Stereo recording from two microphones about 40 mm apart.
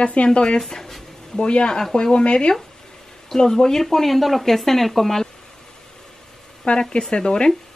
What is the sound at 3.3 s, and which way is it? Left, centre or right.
Speech, centre.